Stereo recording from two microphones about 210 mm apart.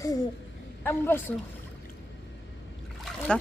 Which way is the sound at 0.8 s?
10° left (ahead or behind).